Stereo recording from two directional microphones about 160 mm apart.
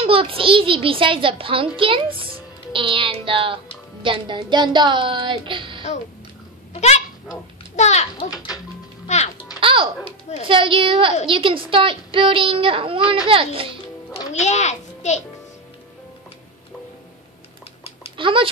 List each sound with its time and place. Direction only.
0.0 s a child's voice: 35° right (ahead or behind)
6.7 s goose: 45° left (ahead or behind)
7.7 s a child's voice: 45° left (ahead or behind)
8.3 s music: 25° left (ahead or behind)
9.0 s music: 45° left (ahead or behind)
9.6 s a child's voice: 35° right (ahead or behind)
14.3 s a child's voice: 45° left (ahead or behind)
18.1 s speech: 30° right (ahead or behind)